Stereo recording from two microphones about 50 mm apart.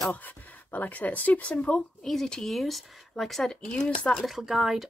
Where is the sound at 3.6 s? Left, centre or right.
Left.